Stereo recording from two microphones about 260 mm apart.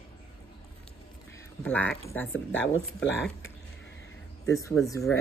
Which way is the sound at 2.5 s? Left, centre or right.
Left.